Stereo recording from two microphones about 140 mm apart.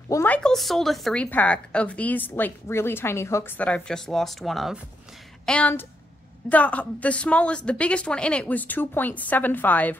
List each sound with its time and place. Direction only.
0.1 s a woman's voice: 10° left (ahead or behind)